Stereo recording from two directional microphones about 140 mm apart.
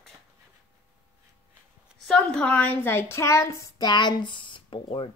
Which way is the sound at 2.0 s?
5° left (ahead or behind).